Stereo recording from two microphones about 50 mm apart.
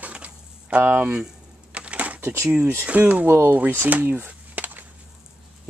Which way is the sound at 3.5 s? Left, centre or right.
Right.